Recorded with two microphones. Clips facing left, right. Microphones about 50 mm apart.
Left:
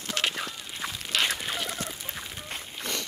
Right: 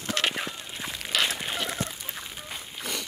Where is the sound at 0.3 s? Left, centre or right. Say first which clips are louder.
Right 2 dB; centre.